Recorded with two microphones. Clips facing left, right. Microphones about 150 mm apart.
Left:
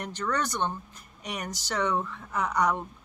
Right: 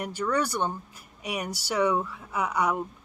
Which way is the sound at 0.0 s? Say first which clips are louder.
Right 3 dB; 10° right (ahead or behind).